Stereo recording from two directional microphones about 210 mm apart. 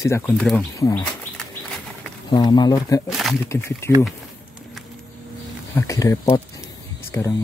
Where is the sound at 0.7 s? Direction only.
15° left (ahead or behind).